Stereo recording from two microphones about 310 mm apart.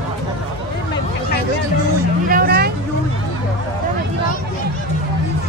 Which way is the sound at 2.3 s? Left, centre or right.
Right.